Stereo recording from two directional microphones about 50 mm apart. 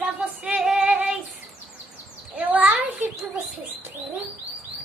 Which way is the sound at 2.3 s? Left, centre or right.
Right.